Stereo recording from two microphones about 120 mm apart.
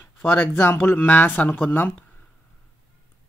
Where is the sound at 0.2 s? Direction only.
15° left (ahead or behind).